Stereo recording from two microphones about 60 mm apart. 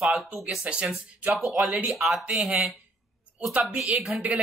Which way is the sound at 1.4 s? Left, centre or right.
Centre.